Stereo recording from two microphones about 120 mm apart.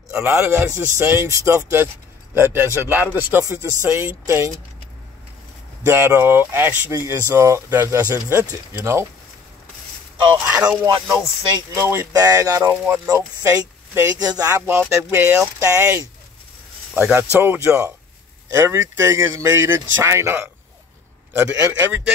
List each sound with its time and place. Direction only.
0.1 s speech: 20° right (ahead or behind)
5.9 s speech: 20° right (ahead or behind)
10.6 s speech: 10° right (ahead or behind)
11.7 s speech: 20° right (ahead or behind)
12.1 s speech: 30° right (ahead or behind)
12.6 s speech: 20° right (ahead or behind)
16.9 s speech: 10° right (ahead or behind)